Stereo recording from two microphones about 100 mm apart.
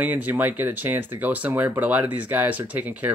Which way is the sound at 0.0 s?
15° right (ahead or behind).